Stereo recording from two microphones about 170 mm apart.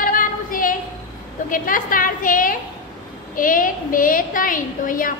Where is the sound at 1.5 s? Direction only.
55° left (ahead or behind).